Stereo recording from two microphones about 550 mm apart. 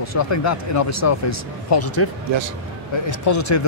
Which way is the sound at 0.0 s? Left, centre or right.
Left.